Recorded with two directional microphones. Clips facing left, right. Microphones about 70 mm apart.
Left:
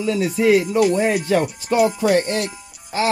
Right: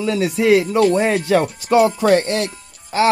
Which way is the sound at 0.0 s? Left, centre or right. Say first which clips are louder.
Right 1 dB; right.